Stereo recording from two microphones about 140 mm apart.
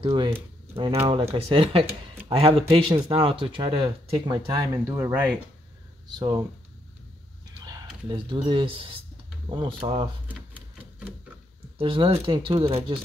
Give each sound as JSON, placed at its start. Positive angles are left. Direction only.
{"t": 0.0, "sound": "speech", "side_deg": -35}
{"t": 8.1, "sound": "speech", "side_deg": -35}
{"t": 11.8, "sound": "speech", "side_deg": -40}